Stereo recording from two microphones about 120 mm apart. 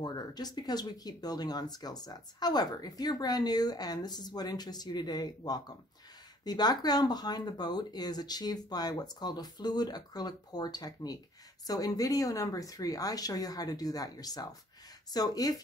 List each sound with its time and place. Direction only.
0.0 s speech: 35° left (ahead or behind)